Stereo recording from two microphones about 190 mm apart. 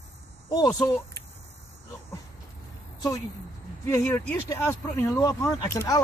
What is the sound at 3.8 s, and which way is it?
Speech, 15° left (ahead or behind).